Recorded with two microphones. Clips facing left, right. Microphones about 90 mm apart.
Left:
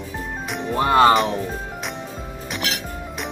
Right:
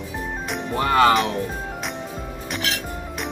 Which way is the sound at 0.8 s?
25° left (ahead or behind).